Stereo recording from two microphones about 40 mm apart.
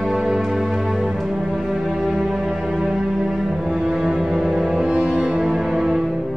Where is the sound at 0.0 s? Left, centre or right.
Centre.